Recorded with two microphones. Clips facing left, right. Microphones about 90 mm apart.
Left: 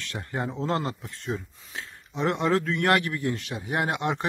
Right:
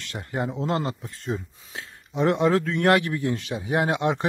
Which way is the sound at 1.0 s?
20° right (ahead or behind).